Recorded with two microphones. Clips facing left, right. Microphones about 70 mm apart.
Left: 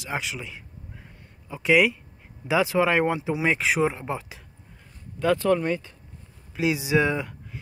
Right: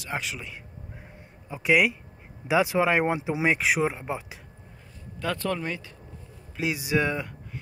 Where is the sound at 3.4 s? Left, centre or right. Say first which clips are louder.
Left 1 dB; centre.